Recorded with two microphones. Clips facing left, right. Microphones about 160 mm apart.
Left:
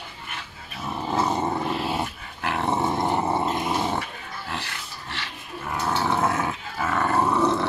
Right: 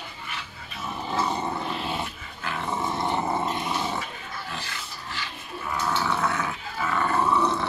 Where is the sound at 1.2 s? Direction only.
50° left (ahead or behind).